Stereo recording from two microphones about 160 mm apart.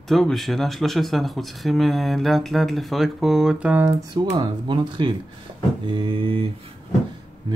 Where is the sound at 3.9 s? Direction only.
25° right (ahead or behind).